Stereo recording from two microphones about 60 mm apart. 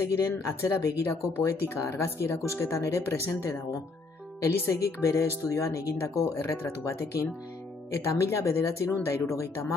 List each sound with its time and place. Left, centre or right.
0.0 s speech: left
4.7 s speech: left